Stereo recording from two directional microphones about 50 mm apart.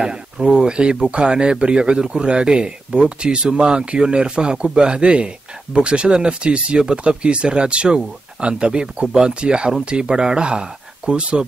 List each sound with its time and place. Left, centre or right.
0.0 s speech: centre